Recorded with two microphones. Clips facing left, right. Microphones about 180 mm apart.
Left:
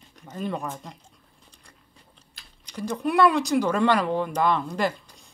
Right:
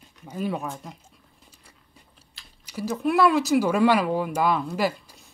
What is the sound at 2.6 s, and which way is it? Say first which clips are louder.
Speech: right 2 dB; 5° right (ahead or behind).